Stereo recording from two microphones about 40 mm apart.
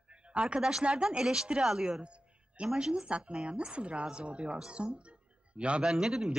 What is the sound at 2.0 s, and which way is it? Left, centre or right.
Music, right.